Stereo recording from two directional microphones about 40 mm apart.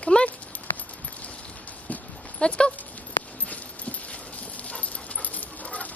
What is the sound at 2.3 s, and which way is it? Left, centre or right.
Dog, left.